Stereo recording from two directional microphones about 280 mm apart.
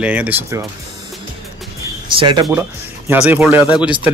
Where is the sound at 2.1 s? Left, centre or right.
Centre.